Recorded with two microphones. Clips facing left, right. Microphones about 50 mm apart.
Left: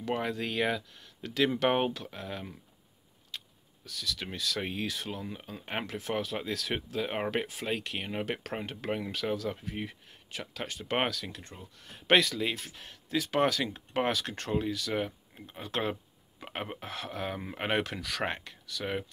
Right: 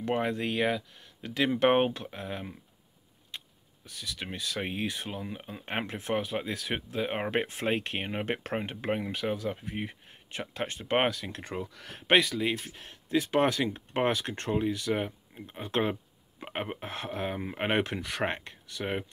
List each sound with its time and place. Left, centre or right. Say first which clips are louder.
0.0 s speech: right 3 dB; right
5.8 s speech: right 2 dB; right
7.4 s speech: right 4 dB; right
11.5 s speech: right 11 dB; right
12.1 s speech: right 1 dB; centre
15.9 s a sound: right 2 dB; centre
16.8 s speech: right 2 dB; right